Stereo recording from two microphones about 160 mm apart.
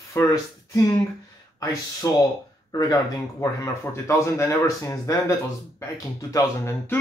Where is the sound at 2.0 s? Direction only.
20° left (ahead or behind).